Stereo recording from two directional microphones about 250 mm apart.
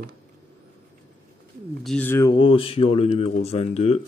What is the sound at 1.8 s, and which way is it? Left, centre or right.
Speech, centre.